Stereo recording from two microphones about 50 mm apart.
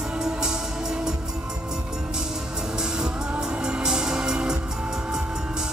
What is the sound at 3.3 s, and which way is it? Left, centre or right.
Music, centre.